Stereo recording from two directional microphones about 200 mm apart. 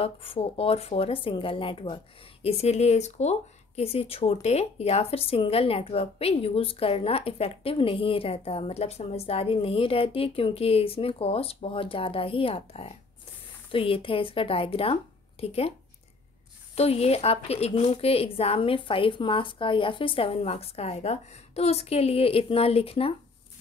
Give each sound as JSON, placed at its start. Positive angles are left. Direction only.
{"t": 0.0, "sound": "speech", "side_deg": 30}
{"t": 16.7, "sound": "speech", "side_deg": 30}